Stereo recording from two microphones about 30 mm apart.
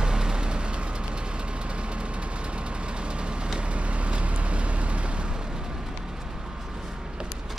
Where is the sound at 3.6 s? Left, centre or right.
Right.